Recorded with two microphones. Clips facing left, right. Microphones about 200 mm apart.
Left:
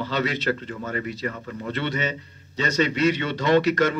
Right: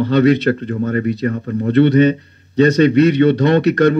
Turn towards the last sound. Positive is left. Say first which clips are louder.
# right 7 dB
turn(degrees=-60)  # may be behind; listen again after turning